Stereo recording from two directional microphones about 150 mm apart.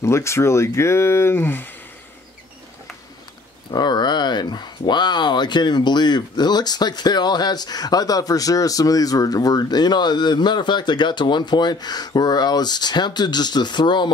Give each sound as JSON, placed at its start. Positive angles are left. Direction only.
{"t": 0.0, "sound": "speech", "side_deg": 20}
{"t": 3.7, "sound": "speech", "side_deg": 30}